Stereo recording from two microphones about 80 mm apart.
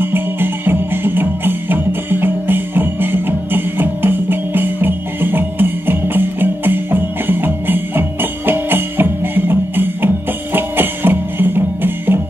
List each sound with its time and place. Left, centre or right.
0.0 s music: right